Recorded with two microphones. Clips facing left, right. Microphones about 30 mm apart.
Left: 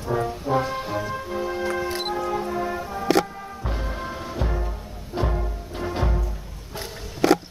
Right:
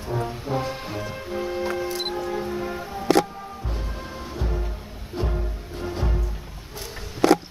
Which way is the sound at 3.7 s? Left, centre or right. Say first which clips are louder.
Left 4 dB; centre.